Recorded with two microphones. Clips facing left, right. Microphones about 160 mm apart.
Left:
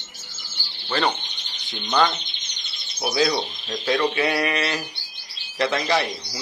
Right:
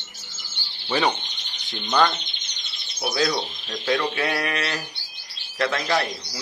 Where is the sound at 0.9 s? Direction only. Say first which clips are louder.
Right 1 dB; 10° right (ahead or behind).